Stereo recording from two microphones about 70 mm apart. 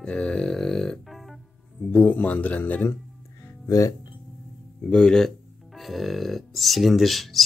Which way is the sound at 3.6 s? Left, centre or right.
Left.